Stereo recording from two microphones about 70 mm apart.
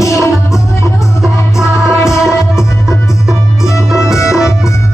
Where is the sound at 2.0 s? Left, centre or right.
Left.